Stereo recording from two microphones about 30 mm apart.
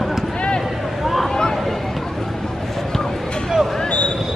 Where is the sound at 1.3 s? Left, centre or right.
Left.